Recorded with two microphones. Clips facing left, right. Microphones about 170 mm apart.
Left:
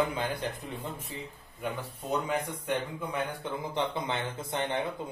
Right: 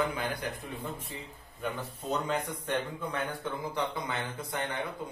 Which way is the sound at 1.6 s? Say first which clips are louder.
Even; 10° left (ahead or behind).